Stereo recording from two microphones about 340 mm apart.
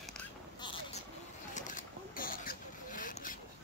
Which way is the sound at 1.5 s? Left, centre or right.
Left.